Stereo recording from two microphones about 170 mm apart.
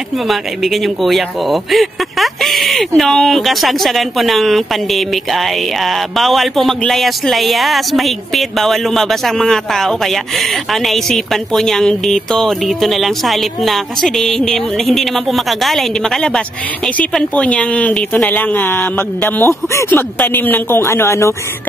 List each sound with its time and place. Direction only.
0.3 s speech: centre (ahead or behind); by 21.4 s 15° left (ahead or behind)